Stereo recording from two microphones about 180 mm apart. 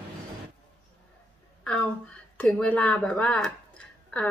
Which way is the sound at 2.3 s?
10° left (ahead or behind).